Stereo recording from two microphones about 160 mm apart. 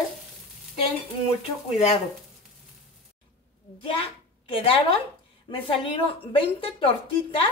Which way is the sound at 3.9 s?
35° left (ahead or behind).